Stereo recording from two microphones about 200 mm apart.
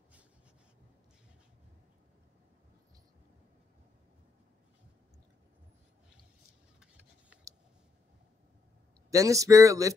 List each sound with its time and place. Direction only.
9.1 s speech: 15° right (ahead or behind)